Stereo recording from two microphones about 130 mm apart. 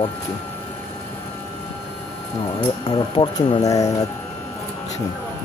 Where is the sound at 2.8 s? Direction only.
30° left (ahead or behind).